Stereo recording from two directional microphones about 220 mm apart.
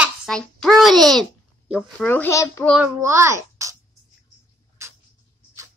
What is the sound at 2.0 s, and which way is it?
Speech, 10° left (ahead or behind).